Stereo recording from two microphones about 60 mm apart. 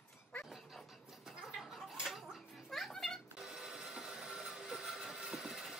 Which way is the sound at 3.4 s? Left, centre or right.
Centre.